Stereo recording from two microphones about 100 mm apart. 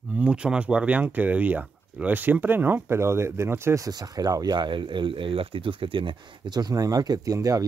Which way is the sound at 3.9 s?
40° right (ahead or behind).